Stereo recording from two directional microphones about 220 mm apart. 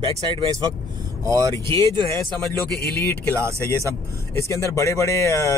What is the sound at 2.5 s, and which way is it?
Speech, 45° left (ahead or behind).